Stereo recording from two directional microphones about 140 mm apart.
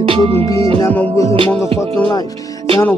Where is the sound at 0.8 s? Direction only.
15° left (ahead or behind).